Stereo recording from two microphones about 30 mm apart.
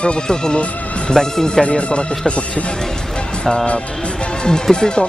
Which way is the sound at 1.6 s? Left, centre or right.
Left.